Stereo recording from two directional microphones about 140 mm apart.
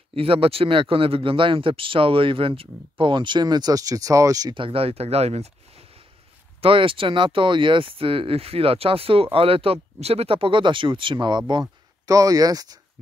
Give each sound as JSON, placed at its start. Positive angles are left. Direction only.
{"t": 0.1, "sound": "speech", "side_deg": -40}